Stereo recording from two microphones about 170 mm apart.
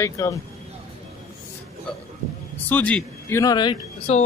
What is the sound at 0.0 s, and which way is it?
Speech, 20° left (ahead or behind).